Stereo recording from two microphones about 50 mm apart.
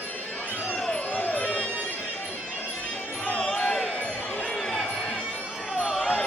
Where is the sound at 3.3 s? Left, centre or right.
Centre.